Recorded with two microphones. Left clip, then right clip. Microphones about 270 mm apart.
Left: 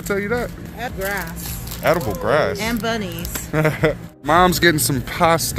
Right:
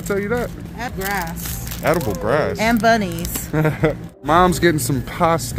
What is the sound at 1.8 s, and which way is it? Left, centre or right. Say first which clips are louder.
Speech: left 1 dB; centre.